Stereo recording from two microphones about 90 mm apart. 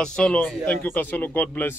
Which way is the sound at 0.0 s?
10° left (ahead or behind).